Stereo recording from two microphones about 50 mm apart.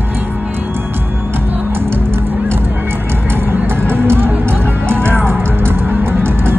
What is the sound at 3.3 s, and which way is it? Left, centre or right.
Music, right.